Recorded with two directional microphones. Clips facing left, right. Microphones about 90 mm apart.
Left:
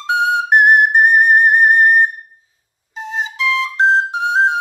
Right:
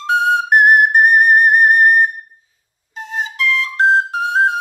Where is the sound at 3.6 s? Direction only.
20° left (ahead or behind).